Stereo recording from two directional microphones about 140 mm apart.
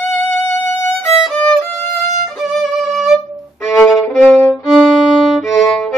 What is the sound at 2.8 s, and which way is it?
Music, centre (ahead or behind).